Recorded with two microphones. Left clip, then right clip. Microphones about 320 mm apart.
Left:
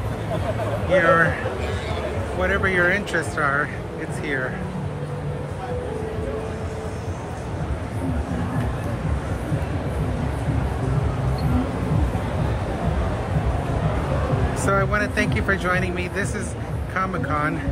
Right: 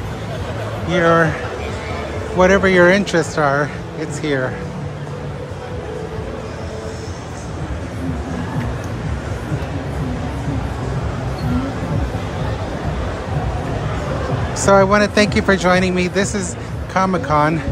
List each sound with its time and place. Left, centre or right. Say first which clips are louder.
0.9 s speech: right 3 dB; centre
2.4 s speech: right 9 dB; centre
14.6 s speech: right 10 dB; centre